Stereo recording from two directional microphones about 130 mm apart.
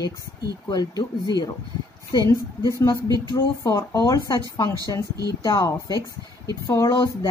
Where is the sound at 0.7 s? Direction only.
30° left (ahead or behind).